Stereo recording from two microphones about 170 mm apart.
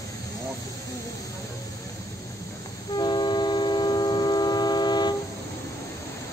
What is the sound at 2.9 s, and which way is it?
Train, 25° left (ahead or behind).